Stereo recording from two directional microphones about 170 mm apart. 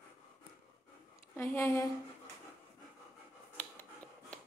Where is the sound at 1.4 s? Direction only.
15° left (ahead or behind).